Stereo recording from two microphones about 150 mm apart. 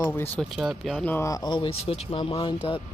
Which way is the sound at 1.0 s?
15° left (ahead or behind).